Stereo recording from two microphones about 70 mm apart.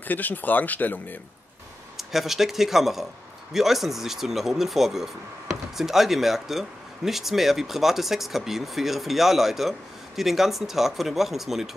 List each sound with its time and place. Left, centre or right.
0.1 s speech: left
2.0 s speech: centre